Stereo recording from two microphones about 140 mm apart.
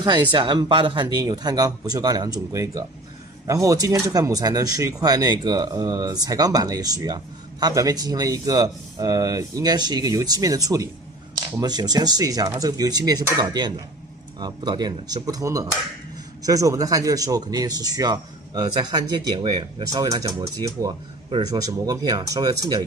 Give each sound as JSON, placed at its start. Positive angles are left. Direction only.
{"t": 0.0, "sound": "a man's voice", "side_deg": -35}